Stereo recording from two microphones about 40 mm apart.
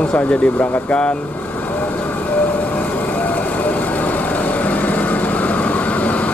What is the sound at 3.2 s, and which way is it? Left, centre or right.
Vehicle, left.